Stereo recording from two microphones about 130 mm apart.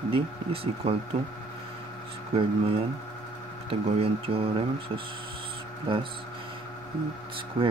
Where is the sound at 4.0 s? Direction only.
45° right (ahead or behind).